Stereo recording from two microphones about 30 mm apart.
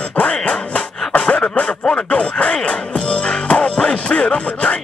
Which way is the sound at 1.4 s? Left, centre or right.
Left.